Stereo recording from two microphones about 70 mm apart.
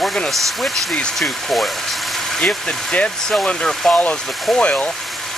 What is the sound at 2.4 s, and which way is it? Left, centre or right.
Speech, centre.